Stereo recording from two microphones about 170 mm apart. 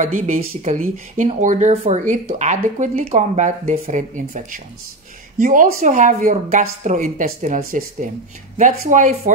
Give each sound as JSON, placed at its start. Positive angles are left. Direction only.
{"t": 0.0, "sound": "speech", "side_deg": -45}
{"t": 5.4, "sound": "speech", "side_deg": -50}